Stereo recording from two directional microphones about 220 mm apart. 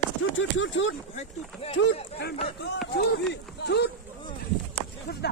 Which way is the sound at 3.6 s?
50° left (ahead or behind).